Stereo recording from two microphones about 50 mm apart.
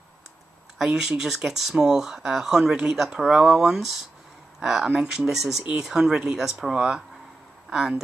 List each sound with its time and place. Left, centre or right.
0.7 s speech: centre